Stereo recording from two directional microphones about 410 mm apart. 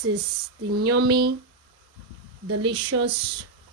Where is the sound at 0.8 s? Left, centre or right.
Right.